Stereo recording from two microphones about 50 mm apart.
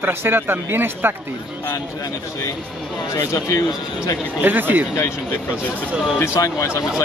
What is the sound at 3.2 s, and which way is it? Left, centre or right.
Speech, left.